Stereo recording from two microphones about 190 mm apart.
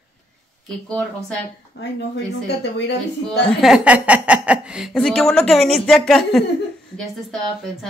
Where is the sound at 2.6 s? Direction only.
65° left (ahead or behind).